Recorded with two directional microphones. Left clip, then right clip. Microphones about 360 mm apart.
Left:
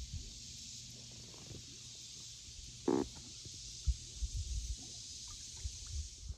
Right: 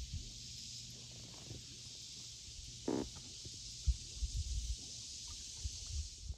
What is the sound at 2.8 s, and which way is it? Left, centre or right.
Stomach rumble, centre.